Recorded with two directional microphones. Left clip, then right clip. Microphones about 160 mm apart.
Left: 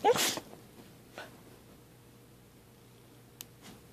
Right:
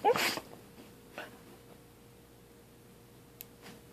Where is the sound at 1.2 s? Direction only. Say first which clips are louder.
Right 2 dB; 10° left (ahead or behind).